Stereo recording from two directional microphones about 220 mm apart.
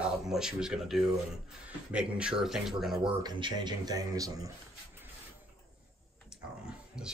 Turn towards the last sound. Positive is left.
turn(degrees=-5)  # may be behind; listen again after turning